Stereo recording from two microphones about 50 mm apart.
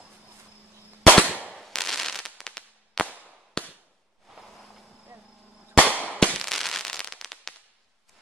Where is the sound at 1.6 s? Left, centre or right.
Centre.